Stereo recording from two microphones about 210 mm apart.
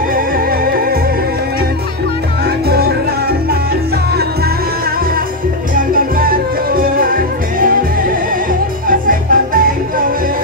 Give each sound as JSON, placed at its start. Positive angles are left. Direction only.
{"t": 0.1, "sound": "music", "side_deg": -45}
{"t": 5.8, "sound": "music", "side_deg": -45}
{"t": 8.8, "sound": "music", "side_deg": -40}